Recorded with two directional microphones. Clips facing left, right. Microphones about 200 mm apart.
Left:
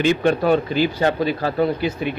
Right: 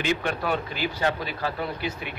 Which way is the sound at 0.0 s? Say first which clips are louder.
Left 9 dB; 30° left (ahead or behind).